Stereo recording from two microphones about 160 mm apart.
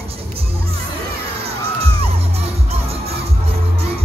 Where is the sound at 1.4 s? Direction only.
40° right (ahead or behind).